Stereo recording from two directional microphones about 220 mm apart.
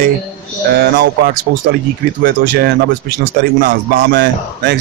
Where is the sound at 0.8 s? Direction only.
45° right (ahead or behind).